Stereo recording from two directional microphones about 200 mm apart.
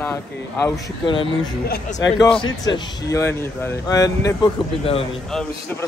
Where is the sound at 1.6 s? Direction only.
50° left (ahead or behind).